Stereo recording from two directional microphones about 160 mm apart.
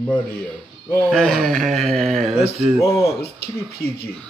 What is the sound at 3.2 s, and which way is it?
Speech, 80° left.